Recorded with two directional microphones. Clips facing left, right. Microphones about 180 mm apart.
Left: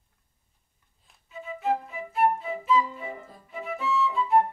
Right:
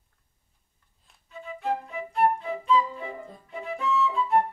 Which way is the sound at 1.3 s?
Centre (ahead or behind).